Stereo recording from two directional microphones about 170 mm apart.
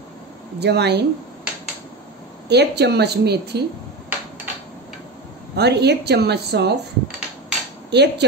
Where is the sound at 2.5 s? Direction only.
80° right.